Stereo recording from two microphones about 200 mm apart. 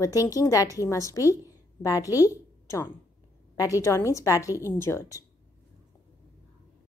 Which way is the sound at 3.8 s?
15° left (ahead or behind).